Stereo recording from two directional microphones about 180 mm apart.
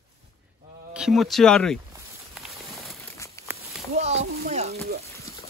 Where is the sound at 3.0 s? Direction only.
15° left (ahead or behind).